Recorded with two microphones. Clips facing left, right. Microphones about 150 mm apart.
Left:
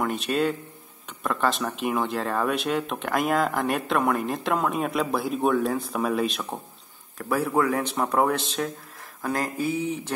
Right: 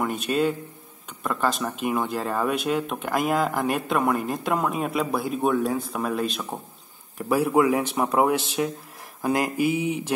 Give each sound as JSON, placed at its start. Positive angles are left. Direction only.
{"t": 0.0, "sound": "speech", "side_deg": 0}
{"t": 7.2, "sound": "speech", "side_deg": -15}